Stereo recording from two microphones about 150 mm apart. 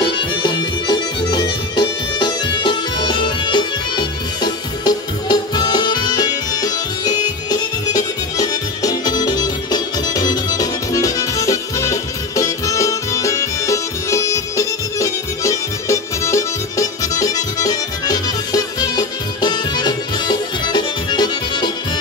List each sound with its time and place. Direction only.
0.4 s music: 30° left (ahead or behind)